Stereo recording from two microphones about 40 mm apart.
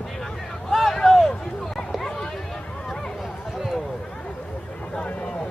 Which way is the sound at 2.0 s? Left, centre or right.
Centre.